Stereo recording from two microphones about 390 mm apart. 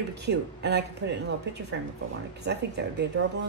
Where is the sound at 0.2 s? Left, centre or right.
Right.